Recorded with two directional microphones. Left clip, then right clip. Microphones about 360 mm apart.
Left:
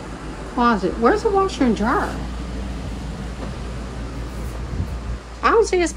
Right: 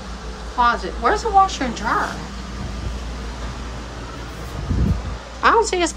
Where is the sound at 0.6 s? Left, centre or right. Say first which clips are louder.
Even; centre.